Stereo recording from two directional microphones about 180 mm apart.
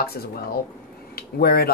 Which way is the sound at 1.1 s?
55° left (ahead or behind).